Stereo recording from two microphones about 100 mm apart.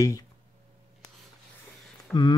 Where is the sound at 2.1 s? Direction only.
15° left (ahead or behind).